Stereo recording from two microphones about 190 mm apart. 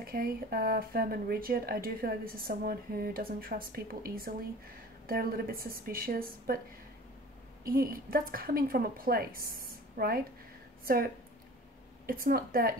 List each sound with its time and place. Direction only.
0.0 s speech: 50° right (ahead or behind)
7.6 s speech: 50° right (ahead or behind)
12.1 s speech: 50° right (ahead or behind)